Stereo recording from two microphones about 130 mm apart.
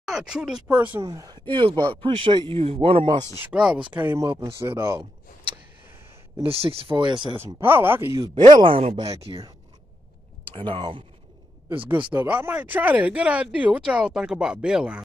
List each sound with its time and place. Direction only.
0.0 s speech: centre (ahead or behind)
0.9 s speech: 25° right (ahead or behind); by 3.3 s 40° right (ahead or behind)
3.3 s speech: 10° right (ahead or behind)
6.4 s speech: 45° right (ahead or behind)
7.3 s speech: 15° right (ahead or behind)
8.4 s speech: 35° right (ahead or behind)
10.5 s speech: 40° right (ahead or behind)
12.1 s speech: 15° right (ahead or behind)